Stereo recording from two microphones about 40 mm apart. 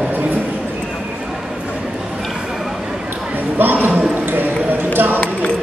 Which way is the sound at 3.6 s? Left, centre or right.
Right.